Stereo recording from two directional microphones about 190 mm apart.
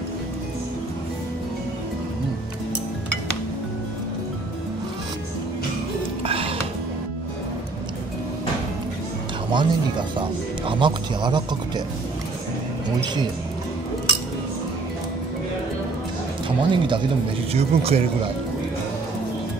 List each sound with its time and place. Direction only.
6.2 s music: 30° right (ahead or behind)
9.5 s speech: 25° right (ahead or behind)
16.4 s speech: 25° right (ahead or behind)